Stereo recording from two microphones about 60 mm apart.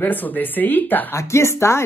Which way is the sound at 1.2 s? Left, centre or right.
Left.